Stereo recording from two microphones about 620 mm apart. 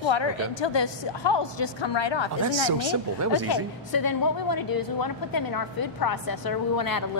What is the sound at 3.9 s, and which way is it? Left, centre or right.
A woman's voice, left.